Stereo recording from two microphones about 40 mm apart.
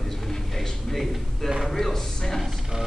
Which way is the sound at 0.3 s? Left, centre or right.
Centre.